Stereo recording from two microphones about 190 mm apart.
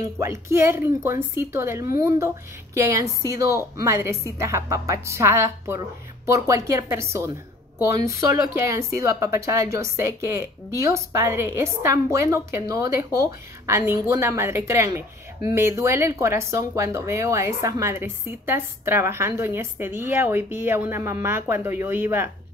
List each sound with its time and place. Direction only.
0.0 s speech: 15° right (ahead or behind)